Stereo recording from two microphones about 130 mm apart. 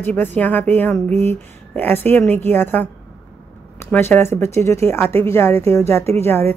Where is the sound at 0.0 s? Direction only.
15° left (ahead or behind).